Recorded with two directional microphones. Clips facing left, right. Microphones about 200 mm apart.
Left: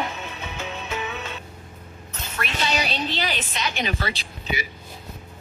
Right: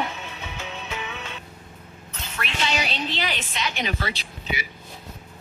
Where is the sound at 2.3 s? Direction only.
40° left (ahead or behind).